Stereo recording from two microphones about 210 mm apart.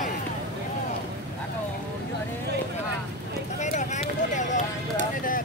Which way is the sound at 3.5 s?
35° left (ahead or behind).